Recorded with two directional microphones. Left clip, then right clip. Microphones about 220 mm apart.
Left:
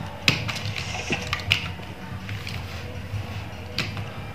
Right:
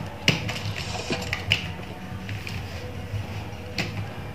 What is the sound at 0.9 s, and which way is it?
Music, 35° right (ahead or behind).